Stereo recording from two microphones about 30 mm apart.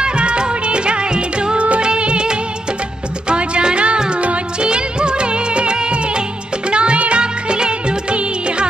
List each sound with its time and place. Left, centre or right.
0.0 s music of bollywood: right
3.3 s music: right
4.6 s music of bollywood: right
6.7 s music: right